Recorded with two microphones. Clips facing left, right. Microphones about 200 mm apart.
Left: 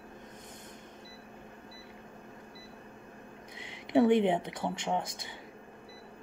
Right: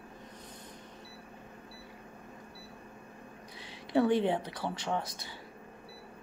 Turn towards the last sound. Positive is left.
turn(degrees=20)  # may be behind; listen again after turning